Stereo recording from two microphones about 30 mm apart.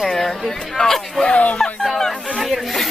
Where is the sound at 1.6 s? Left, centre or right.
Centre.